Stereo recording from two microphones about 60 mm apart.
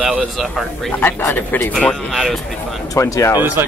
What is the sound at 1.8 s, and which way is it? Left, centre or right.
Speech, centre.